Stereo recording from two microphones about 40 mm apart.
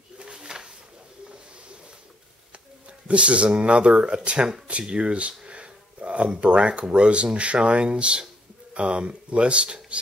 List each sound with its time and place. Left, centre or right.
0.2 s pigeon: right
3.1 s speech: right
4.6 s a sound: right
6.6 s speech: right